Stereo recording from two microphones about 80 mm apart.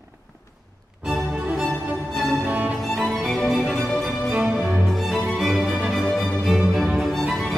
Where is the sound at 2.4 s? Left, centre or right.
Right.